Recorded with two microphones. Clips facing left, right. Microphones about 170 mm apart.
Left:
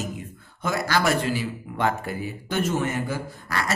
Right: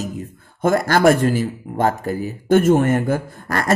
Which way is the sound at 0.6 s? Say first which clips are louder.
Right 9 dB; 50° right (ahead or behind).